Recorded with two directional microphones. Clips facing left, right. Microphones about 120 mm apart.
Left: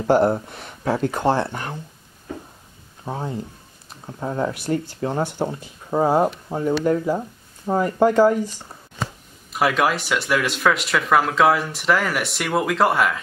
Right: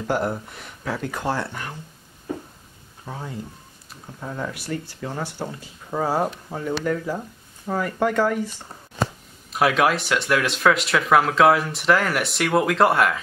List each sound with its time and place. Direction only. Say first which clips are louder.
0.0 s speech: left 7 dB; 30° left (ahead or behind)
3.1 s speech: left 5 dB; 30° left (ahead or behind)
5.2 s speech: left 6 dB; 20° left (ahead or behind)
9.5 s speech: even; centre (ahead or behind)